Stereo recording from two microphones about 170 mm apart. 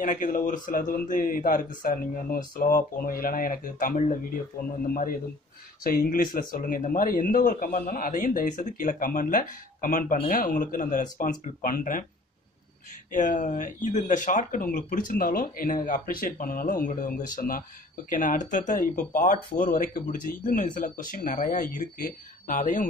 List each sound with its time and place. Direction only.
0.0 s speech: 50° left (ahead or behind)
5.9 s speech: 55° left (ahead or behind)
13.1 s speech: 50° left (ahead or behind)